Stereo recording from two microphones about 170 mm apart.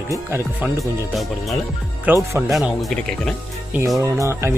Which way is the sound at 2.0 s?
15° right (ahead or behind).